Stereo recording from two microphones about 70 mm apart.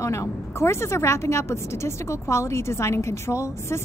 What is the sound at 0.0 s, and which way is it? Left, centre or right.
A woman's voice, left.